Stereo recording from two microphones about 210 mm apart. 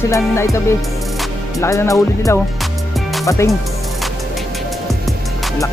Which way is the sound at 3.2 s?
15° left (ahead or behind).